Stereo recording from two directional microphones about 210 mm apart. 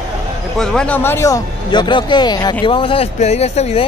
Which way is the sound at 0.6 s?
5° left (ahead or behind).